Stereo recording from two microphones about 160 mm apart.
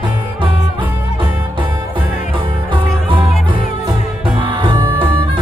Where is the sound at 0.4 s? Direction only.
30° right (ahead or behind).